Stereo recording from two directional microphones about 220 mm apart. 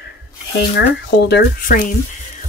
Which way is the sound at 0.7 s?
50° left (ahead or behind).